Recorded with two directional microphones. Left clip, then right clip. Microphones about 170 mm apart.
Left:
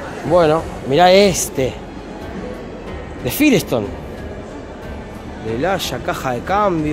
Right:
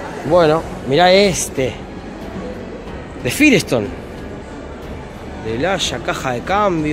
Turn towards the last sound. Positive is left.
turn(degrees=5)  # may be behind; listen again after turning